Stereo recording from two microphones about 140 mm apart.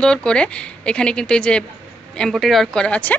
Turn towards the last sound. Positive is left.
turn(degrees=10)  # may be behind; listen again after turning